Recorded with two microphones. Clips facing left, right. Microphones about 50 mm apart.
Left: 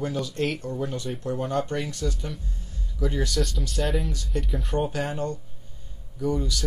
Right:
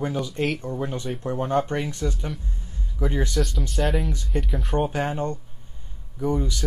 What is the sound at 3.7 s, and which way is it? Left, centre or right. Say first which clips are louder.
Speech: right 2 dB; centre.